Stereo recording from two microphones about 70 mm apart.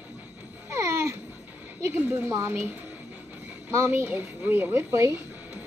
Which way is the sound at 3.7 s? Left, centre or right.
Right.